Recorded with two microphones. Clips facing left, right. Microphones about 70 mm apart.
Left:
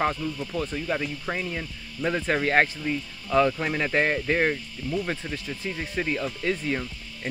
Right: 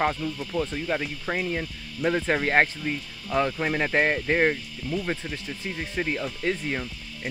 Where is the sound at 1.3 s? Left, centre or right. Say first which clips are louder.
Right 3 dB; right.